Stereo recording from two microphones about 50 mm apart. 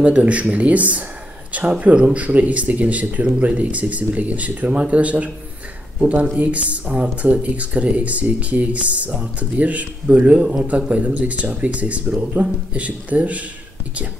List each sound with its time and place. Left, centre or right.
0.0 s speech: right
6.3 s speech: right
10.9 s speech: right